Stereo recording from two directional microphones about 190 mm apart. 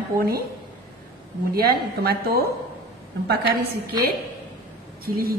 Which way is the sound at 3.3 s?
55° right (ahead or behind).